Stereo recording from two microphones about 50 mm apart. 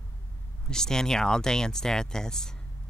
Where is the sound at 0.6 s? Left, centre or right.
Centre.